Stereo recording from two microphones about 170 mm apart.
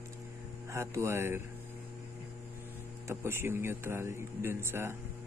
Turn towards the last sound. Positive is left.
turn(degrees=-15)  # may be behind; listen again after turning